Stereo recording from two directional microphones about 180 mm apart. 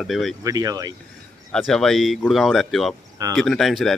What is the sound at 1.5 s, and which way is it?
A man's voice, centre (ahead or behind).